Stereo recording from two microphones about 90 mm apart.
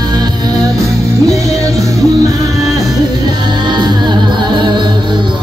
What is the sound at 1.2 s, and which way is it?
Music, 40° right (ahead or behind).